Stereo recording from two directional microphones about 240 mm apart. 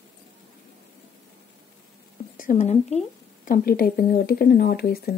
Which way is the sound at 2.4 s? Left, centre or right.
Left.